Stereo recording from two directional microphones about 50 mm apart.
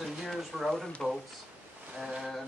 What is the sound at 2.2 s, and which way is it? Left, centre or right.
Mantra, centre.